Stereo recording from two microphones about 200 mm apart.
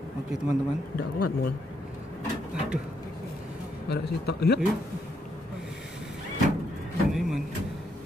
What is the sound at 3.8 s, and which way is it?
Speech, 55° left (ahead or behind).